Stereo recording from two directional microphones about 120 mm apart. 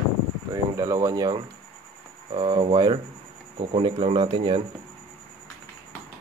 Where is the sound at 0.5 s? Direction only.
30° right (ahead or behind).